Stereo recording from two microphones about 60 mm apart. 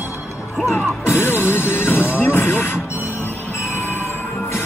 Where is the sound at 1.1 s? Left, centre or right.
Left.